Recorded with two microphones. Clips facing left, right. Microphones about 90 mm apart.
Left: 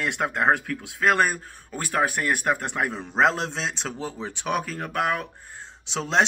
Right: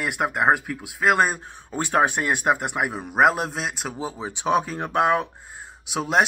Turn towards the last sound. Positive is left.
turn(degrees=-10)  # may be behind; listen again after turning